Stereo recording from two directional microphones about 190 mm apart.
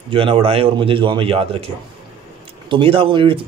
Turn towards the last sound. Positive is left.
turn(degrees=-25)  # may be behind; listen again after turning